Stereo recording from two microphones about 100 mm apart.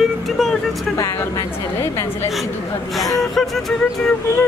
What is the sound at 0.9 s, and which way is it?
Speech, 30° left (ahead or behind).